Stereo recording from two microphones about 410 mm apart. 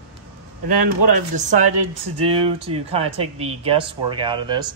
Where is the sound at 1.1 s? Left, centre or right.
Centre.